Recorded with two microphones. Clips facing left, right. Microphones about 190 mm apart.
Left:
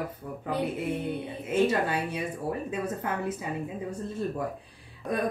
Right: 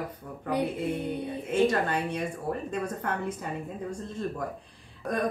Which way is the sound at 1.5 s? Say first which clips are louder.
Even; 10° left (ahead or behind).